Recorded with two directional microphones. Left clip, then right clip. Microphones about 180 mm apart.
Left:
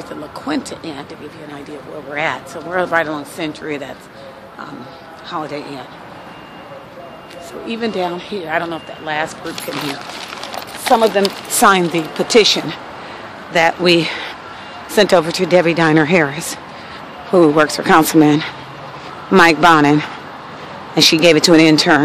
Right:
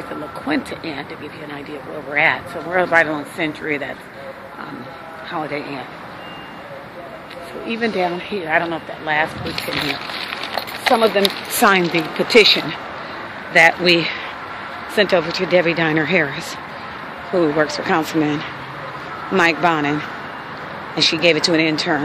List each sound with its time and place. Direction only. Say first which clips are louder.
0.5 s speech: even; 15° left (ahead or behind)
2.1 s speech: right 4 dB; 10° left (ahead or behind)
5.3 s speech: left 1 dB; 15° left (ahead or behind)
7.6 s speech: even; 15° left (ahead or behind)
11.0 s speech: left 2 dB; 20° left (ahead or behind); by 21.9 s 45° left (ahead or behind)